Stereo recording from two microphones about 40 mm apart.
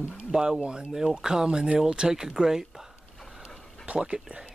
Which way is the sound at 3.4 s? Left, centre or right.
Right.